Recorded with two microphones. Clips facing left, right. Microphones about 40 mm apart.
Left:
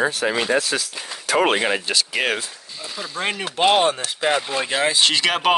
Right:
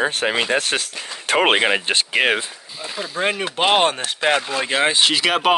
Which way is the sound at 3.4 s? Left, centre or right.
Right.